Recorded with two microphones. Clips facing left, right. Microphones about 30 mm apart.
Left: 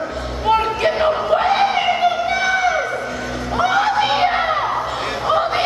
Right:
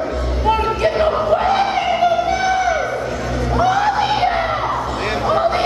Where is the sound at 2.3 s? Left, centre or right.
Centre.